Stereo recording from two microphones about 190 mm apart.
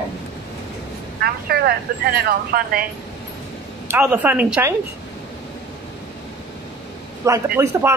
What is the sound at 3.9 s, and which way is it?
Speech, 10° right (ahead or behind).